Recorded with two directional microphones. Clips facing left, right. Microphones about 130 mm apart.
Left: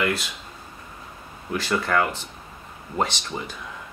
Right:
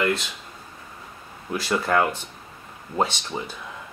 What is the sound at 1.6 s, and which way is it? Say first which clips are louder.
Speech: right 1 dB; 15° right (ahead or behind).